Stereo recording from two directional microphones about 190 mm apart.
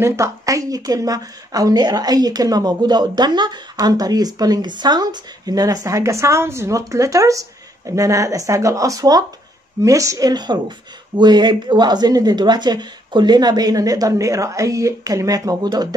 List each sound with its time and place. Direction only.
0.0 s a woman's voice: 15° right (ahead or behind)